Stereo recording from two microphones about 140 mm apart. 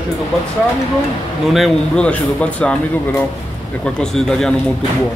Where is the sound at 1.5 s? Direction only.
5° left (ahead or behind).